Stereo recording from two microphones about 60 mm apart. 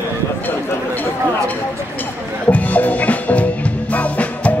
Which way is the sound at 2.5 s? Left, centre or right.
Left.